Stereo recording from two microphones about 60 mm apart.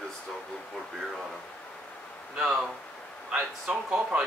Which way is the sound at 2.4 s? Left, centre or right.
Centre.